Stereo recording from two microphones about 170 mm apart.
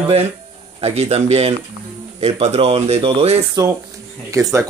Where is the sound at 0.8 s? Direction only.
40° right (ahead or behind).